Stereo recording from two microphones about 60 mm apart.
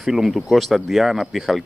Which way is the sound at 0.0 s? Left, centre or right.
Centre.